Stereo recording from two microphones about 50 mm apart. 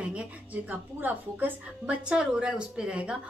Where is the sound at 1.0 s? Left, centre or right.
Right.